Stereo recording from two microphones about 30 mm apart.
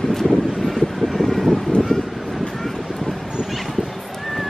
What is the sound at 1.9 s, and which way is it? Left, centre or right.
Vehicle, centre.